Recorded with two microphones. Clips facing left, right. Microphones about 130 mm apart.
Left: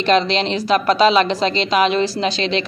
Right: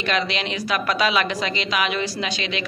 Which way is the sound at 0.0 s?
30° left (ahead or behind).